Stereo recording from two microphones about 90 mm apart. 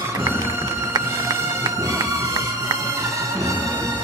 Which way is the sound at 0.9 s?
40° right (ahead or behind).